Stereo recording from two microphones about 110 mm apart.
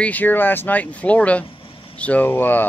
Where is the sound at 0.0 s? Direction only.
15° left (ahead or behind).